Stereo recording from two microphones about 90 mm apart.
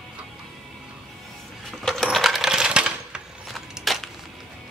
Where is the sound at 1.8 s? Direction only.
5° left (ahead or behind).